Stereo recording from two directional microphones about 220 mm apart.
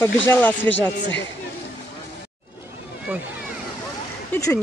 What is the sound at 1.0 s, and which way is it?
Speech, 55° left (ahead or behind).